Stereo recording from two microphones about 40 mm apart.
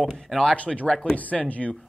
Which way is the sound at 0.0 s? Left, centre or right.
Centre.